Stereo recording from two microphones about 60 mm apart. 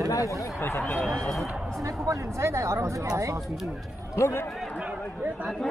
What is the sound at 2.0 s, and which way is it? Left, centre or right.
Speech, right.